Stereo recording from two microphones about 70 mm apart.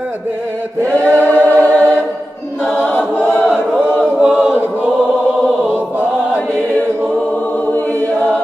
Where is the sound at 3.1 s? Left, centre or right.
Left.